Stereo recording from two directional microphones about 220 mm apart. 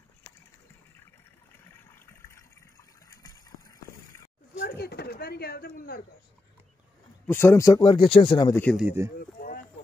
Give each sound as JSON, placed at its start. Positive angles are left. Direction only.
{"t": 3.1, "sound": "vehicle", "side_deg": 15}
{"t": 4.6, "sound": "speech", "side_deg": 45}
{"t": 7.2, "sound": "speech", "side_deg": 10}
{"t": 8.6, "sound": "a man's voice", "side_deg": -5}
{"t": 9.4, "sound": "a sound", "side_deg": 40}